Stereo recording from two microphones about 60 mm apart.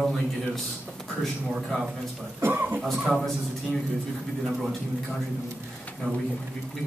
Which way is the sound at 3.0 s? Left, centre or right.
Centre.